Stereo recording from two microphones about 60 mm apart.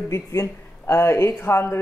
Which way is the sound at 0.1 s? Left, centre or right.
Left.